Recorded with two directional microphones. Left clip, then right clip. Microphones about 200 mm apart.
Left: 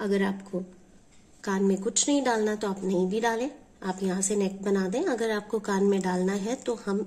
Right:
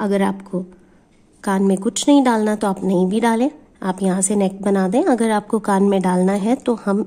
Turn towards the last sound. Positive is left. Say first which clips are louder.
# right 11 dB
turn(degrees=-55)  # may be behind; listen again after turning